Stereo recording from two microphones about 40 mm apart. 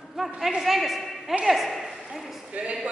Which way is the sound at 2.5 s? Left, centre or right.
Right.